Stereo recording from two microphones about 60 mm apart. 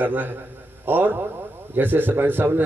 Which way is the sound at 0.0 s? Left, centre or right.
Right.